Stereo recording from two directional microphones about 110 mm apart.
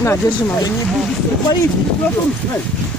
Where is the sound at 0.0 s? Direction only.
25° left (ahead or behind).